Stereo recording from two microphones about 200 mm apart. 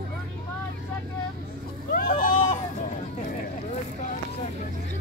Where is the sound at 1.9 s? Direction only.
50° left (ahead or behind).